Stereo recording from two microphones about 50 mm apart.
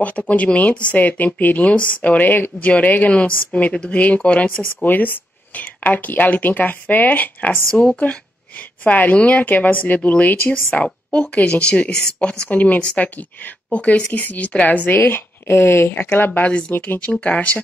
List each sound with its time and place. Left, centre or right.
0.2 s a woman's voice: left
4.8 s a woman's voice: left
10.7 s a woman's voice: left
14.9 s speech: left
15.9 s a woman's voice: left